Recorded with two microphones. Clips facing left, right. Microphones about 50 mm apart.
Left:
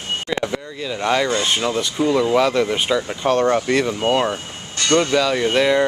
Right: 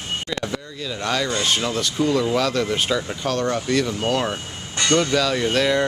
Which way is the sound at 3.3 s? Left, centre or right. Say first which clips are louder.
Left 6 dB; left.